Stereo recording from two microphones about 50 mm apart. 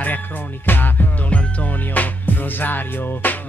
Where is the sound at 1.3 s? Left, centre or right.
Left.